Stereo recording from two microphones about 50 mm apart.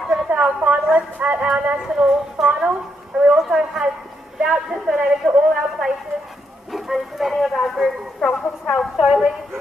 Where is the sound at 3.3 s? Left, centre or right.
Centre.